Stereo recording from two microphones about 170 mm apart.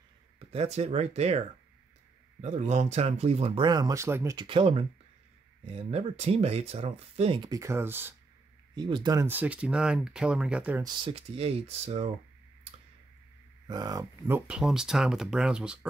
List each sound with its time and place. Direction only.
0.5 s speech: 35° right (ahead or behind)
2.4 s speech: 45° right (ahead or behind)
3.6 s speech: 25° right (ahead or behind)
4.5 s speech: 35° right (ahead or behind); by 8.1 s 15° right (ahead or behind)
8.7 s speech: 25° right (ahead or behind); by 10.8 s 10° right (ahead or behind)
10.8 s speech: 25° right (ahead or behind)
13.7 s speech: 25° right (ahead or behind)
14.5 s speech: 5° right (ahead or behind)